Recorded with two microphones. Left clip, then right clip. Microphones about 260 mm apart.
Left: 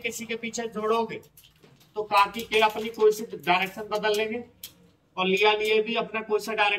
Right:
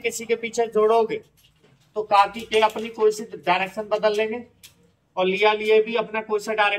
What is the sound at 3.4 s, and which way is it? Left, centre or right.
A man's voice, centre.